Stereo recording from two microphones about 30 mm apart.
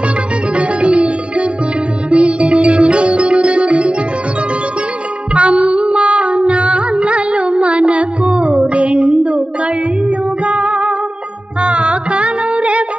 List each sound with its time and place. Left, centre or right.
0.6 s sitar: right
2.0 s music: right
5.3 s music: right